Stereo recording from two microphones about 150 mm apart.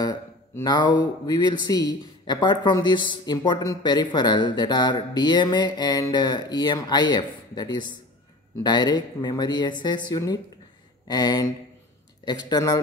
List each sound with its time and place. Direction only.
0.0 s speech: 25° left (ahead or behind)